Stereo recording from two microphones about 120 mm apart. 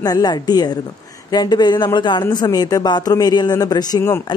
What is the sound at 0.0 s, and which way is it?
A woman's voice, 35° left (ahead or behind).